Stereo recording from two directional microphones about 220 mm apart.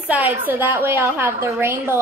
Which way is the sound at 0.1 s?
10° right (ahead or behind).